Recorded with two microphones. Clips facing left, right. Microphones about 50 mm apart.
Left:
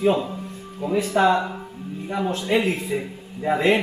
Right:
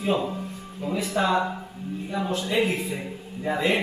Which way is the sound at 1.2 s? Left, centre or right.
Left.